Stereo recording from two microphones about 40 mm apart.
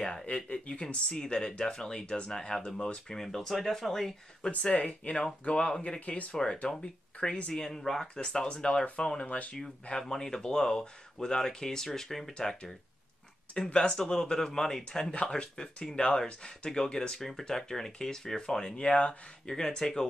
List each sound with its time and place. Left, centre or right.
0.0 s speech: centre
0.5 s speech: left
3.2 s speech: centre
4.7 s speech: left
6.3 s speech: left
7.5 s speech: centre
8.2 s speech: left
9.2 s speech: left
9.8 s speech: centre
13.7 s speech: centre
18.8 s speech: left